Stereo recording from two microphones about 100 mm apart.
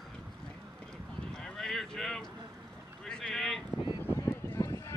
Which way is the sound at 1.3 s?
5° left (ahead or behind).